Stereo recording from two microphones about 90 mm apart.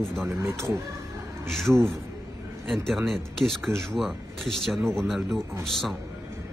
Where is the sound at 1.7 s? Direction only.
10° right (ahead or behind).